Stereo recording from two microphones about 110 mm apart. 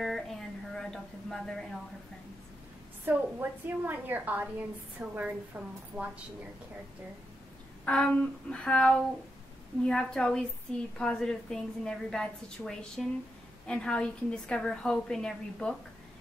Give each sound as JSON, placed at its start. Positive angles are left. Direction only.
{"t": 0.0, "sound": "a sound", "side_deg": 0}
{"t": 3.1, "sound": "a woman's voice", "side_deg": -15}
{"t": 7.8, "sound": "a woman's voice", "side_deg": 10}